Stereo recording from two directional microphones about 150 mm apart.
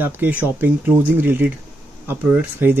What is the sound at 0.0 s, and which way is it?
Speech, 10° right (ahead or behind).